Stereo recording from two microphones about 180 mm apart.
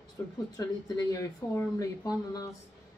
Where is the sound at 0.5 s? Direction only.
20° left (ahead or behind).